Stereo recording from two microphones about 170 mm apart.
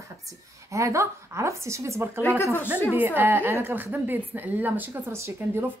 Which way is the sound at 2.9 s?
10° right (ahead or behind).